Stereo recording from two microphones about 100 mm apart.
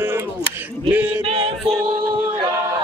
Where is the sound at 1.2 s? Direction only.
70° right (ahead or behind).